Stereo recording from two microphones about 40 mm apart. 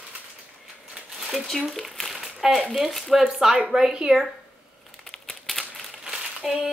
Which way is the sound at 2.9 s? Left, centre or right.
Centre.